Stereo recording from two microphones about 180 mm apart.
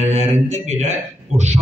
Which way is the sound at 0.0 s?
35° right (ahead or behind).